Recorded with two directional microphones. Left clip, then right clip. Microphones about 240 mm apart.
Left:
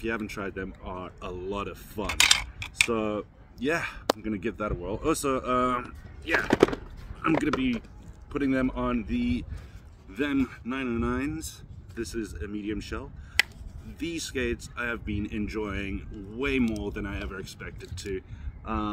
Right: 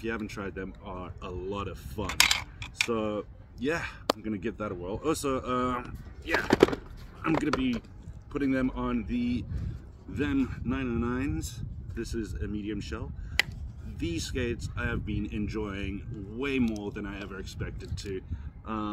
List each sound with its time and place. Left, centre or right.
0.0 s speech: centre